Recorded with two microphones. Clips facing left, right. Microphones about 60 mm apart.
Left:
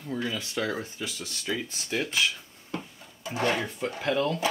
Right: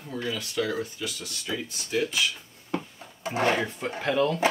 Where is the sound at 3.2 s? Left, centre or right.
Right.